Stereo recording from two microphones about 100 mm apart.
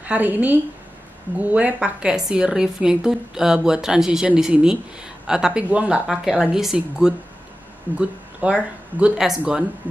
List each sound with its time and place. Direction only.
0.0 s a woman's voice: 15° right (ahead or behind)
6.0 s a woman's voice: 5° right (ahead or behind)